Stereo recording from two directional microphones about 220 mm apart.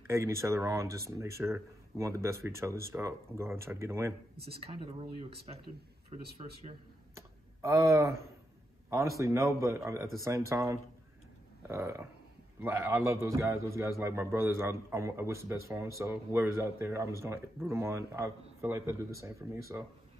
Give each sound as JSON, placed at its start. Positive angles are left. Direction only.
{"t": 0.1, "sound": "a man's voice", "side_deg": -10}
{"t": 4.5, "sound": "a man's voice", "side_deg": -25}
{"t": 7.2, "sound": "a sound", "side_deg": -15}
{"t": 8.9, "sound": "a man's voice", "side_deg": -15}